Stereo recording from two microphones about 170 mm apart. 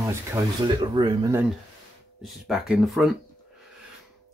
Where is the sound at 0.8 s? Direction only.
25° right (ahead or behind).